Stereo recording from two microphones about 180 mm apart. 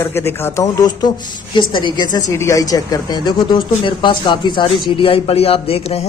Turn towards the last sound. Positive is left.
turn(degrees=35)  # may be behind; listen again after turning